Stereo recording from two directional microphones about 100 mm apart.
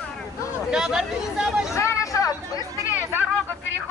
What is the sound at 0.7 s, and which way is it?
Speech, 5° right (ahead or behind).